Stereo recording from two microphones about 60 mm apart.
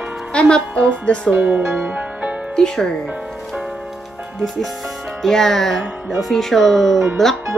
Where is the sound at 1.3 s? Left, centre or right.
Right.